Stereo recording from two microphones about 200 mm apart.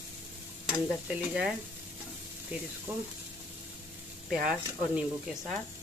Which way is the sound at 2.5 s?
10° right (ahead or behind).